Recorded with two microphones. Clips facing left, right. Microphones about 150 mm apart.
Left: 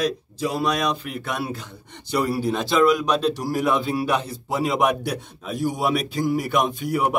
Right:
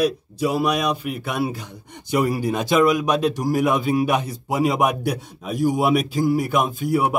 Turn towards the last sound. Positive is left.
turn(degrees=-5)  # may be behind; listen again after turning